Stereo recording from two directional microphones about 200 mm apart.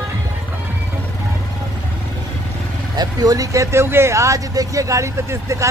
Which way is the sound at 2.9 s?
20° right (ahead or behind).